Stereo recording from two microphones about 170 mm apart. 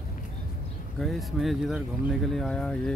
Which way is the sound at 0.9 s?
Centre (ahead or behind).